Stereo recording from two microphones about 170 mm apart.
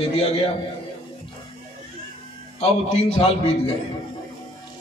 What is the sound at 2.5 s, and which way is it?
Speech, 35° left (ahead or behind).